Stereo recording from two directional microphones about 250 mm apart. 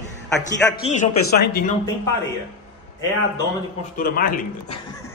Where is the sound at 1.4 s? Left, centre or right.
Left.